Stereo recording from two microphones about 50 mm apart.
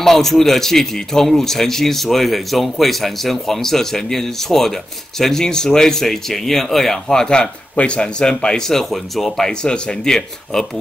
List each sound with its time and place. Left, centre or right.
0.0 s a man's voice: centre
9.5 s speech: centre